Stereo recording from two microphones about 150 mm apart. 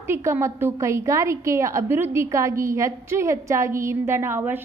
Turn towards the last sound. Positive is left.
turn(degrees=-15)  # may be behind; listen again after turning